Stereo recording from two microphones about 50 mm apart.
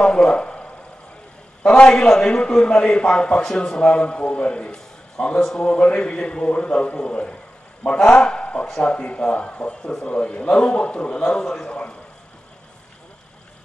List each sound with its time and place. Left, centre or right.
0.0 s a man's voice: centre
4.7 s a sound: centre
5.6 s a man's voice: left